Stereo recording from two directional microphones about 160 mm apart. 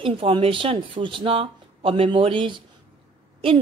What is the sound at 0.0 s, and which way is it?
Speech, 35° right (ahead or behind).